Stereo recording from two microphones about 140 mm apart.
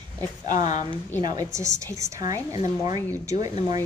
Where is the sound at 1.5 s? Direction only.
20° right (ahead or behind).